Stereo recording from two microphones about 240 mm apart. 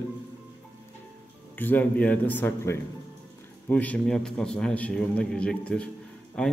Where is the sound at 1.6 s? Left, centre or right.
Centre.